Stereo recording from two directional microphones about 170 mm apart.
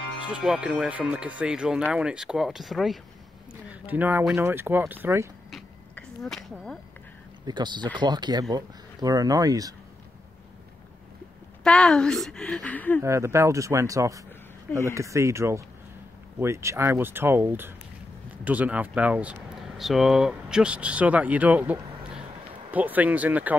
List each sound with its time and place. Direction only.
0.2 s speech: 5° right (ahead or behind)
5.9 s speech: centre (ahead or behind)
7.4 s speech: 25° right (ahead or behind)
11.6 s speech: 5° left (ahead or behind)
13.0 s speech: 15° right (ahead or behind)